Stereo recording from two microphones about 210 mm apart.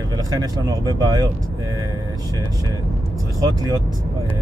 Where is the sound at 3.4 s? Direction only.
15° right (ahead or behind).